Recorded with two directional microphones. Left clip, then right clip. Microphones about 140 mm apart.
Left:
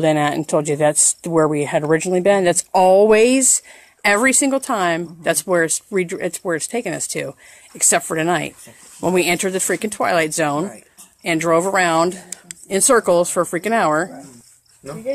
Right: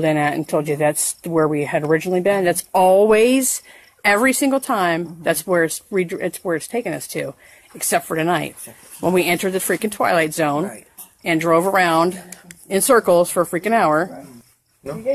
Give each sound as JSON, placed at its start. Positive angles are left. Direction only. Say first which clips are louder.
{"t": 0.0, "sound": "a woman's voice", "louder": "left 1 dB", "side_deg": 35}